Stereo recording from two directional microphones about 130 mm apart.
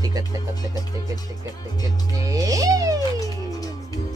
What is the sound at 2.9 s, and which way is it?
Music, 25° left (ahead or behind).